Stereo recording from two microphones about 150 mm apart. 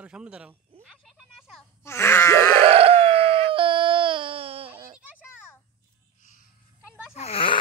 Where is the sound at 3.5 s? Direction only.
35° right (ahead or behind).